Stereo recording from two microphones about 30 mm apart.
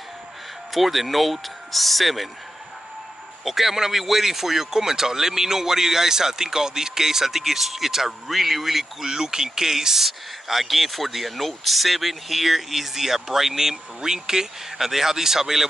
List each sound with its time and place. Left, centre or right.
0.7 s speech: centre
3.4 s speech: centre
9.0 s speech: right